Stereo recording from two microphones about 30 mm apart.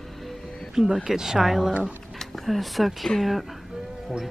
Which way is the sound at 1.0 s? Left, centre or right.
Centre.